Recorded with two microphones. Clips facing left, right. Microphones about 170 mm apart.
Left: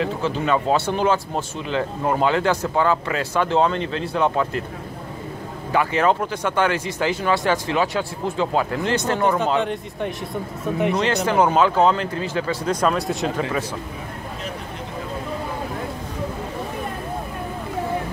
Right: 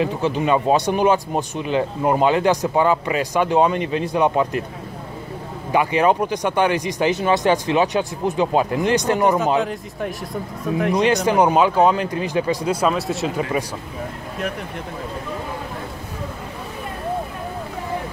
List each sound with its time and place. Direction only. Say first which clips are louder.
0.0 s speech: right 3 dB; 15° right (ahead or behind)
5.7 s speech: right 2 dB; 15° right (ahead or behind)
9.6 s speech: even; centre (ahead or behind)
11.0 s speech: right 4 dB; 15° right (ahead or behind)
12.8 s speech: left 1 dB; centre (ahead or behind)